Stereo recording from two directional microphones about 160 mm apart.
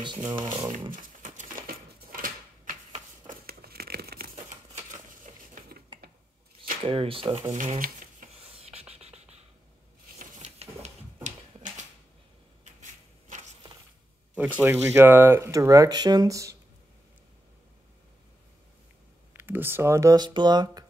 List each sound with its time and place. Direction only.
0.4 s speech: 30° right (ahead or behind)
0.9 s a sound: 55° right (ahead or behind); by 4.3 s 75° right (ahead or behind)
4.9 s dishes: 55° right (ahead or behind)
6.8 s speech: 35° right (ahead or behind)
7.5 s shuffling cards: 50° right (ahead or behind)
8.4 s a sound: 35° right (ahead or behind)
13.3 s walk: 55° right (ahead or behind)
14.3 s speech: 10° right (ahead or behind)
19.3 s speech: 15° right (ahead or behind)